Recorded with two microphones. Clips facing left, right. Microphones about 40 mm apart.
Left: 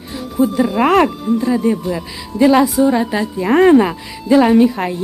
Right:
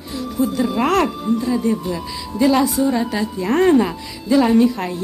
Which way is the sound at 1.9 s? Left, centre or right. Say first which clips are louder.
Left 3 dB; centre.